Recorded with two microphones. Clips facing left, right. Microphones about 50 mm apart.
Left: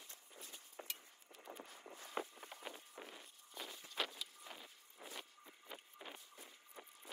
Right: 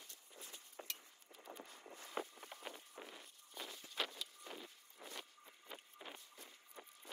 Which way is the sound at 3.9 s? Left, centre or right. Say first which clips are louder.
Even; centre.